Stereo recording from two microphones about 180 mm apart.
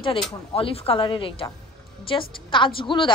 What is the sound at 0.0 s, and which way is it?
A woman's voice, 30° left (ahead or behind).